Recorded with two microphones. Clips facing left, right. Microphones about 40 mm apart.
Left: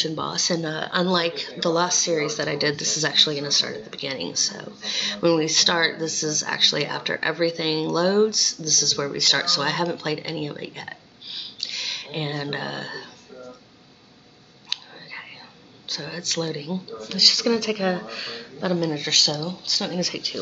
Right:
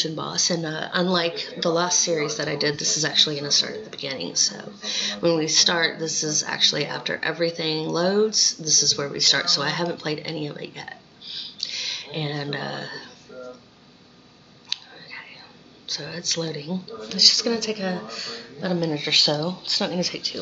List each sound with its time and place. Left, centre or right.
0.0 s speech: centre
14.7 s whispering: centre
15.9 s speech: centre
18.8 s speech: centre
19.0 s speech: centre
19.9 s speech: centre